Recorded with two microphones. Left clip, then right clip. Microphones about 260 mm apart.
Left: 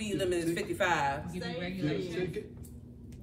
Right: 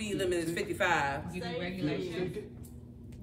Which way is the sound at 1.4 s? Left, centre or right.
Right.